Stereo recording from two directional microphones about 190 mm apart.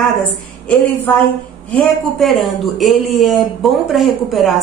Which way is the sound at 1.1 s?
5° left (ahead or behind).